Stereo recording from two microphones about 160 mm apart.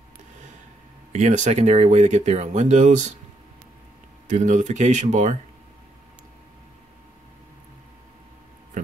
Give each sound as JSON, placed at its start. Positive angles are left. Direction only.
{"t": 1.1, "sound": "speech", "side_deg": -50}
{"t": 4.3, "sound": "speech", "side_deg": -50}
{"t": 8.8, "sound": "a sound", "side_deg": -50}